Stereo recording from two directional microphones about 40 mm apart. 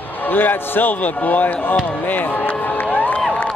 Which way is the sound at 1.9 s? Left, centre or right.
Left.